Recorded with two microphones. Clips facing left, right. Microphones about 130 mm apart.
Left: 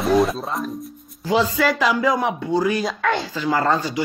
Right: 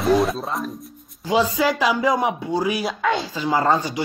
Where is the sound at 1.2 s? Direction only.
15° right (ahead or behind).